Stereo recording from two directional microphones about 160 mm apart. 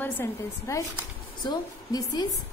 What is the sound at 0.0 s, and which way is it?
A woman's voice, 15° left (ahead or behind).